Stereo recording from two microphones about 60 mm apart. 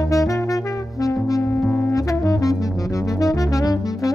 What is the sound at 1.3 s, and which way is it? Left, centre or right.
Brass instrument, left.